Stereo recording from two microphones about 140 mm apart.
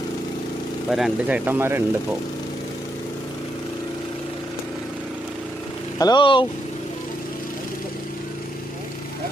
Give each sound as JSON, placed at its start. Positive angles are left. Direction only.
{"t": 0.8, "sound": "speech", "side_deg": 0}
{"t": 5.9, "sound": "speech", "side_deg": 30}